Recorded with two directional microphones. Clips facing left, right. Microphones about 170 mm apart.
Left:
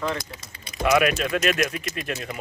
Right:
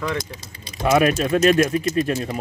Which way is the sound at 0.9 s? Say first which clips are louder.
Right 3 dB; 30° right (ahead or behind).